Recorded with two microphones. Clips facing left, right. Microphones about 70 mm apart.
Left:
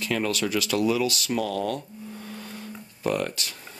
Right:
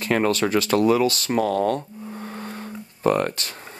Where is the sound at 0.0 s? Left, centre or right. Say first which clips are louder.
Right 6 dB; right.